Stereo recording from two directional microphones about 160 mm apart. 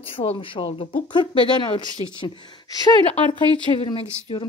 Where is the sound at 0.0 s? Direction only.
35° left (ahead or behind).